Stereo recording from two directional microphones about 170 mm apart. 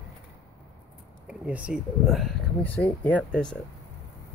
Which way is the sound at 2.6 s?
10° left (ahead or behind).